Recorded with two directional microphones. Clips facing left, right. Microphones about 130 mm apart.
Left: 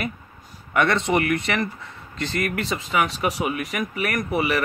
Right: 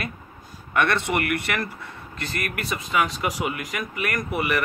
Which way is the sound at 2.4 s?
25° left (ahead or behind).